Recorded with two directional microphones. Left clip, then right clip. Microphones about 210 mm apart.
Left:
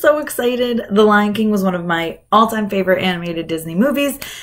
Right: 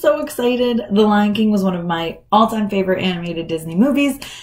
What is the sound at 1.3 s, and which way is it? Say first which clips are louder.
Speech: even; 50° left (ahead or behind).